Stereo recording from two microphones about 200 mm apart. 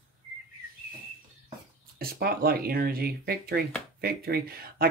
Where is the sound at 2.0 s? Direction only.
50° right (ahead or behind).